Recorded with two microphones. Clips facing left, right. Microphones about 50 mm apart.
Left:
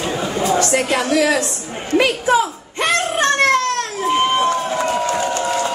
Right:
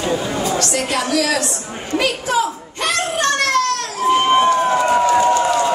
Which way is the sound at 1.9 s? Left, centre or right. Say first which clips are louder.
Left 3 dB; centre.